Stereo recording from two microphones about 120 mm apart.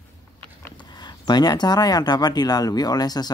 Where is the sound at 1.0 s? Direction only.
35° left (ahead or behind).